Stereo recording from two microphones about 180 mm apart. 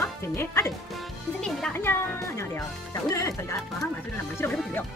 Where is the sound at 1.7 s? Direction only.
15° left (ahead or behind).